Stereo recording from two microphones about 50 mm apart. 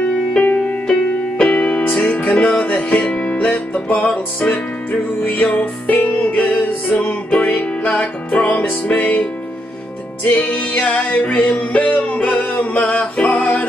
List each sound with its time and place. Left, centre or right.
0.6 s music: centre
1.5 s music: left
10.2 s music: left